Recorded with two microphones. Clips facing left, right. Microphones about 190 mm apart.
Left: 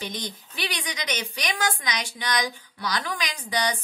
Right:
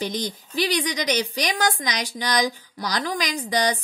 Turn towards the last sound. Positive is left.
turn(degrees=-40)  # may be behind; listen again after turning